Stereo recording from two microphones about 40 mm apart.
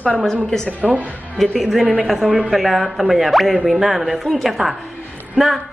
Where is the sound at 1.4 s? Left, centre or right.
Centre.